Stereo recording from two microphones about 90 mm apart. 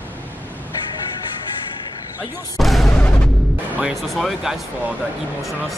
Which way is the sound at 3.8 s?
Centre (ahead or behind).